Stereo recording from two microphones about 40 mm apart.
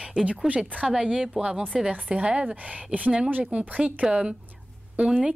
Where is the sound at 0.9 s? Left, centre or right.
Centre.